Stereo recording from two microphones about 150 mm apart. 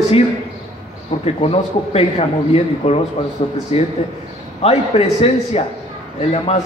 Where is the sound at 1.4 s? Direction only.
40° left (ahead or behind).